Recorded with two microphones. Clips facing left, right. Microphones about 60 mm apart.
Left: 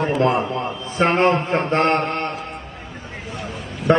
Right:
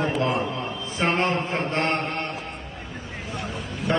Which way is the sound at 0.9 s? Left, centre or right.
Left.